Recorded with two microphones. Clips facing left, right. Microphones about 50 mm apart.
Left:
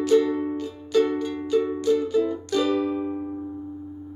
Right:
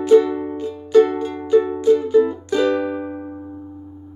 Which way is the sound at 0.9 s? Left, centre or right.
Right.